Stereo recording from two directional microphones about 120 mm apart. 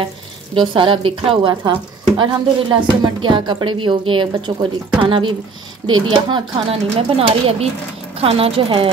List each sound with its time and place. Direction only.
0.6 s speech: 45° right (ahead or behind)
1.5 s speech: 35° right (ahead or behind)
6.7 s speech: 55° right (ahead or behind)